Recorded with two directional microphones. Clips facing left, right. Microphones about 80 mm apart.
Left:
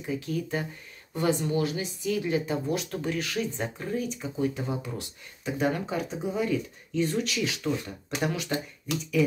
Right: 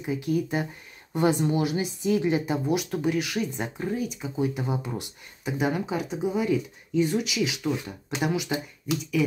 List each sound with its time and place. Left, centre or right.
0.0 s speech: centre